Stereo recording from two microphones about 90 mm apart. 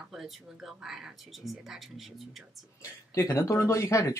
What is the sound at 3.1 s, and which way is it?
Speech, 35° left (ahead or behind).